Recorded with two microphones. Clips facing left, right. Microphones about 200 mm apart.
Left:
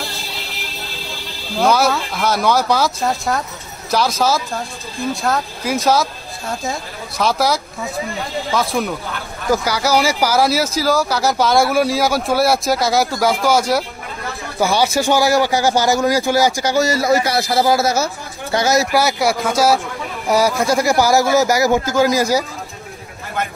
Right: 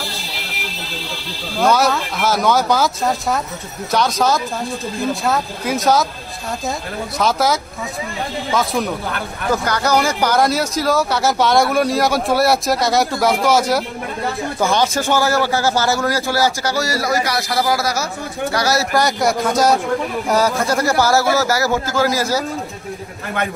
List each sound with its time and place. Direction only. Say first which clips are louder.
1.6 s a man's voice: even; centre (ahead or behind); by 22.4 s 15° left (ahead or behind)